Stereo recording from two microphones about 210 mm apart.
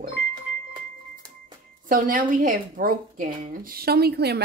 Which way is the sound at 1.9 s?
40° right (ahead or behind).